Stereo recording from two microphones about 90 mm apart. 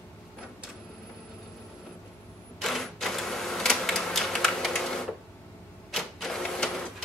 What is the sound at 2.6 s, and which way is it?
Typewriter, 5° left (ahead or behind).